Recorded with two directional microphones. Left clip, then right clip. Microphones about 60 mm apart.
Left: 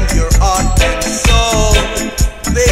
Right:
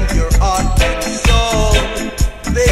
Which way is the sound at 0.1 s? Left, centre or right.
Left.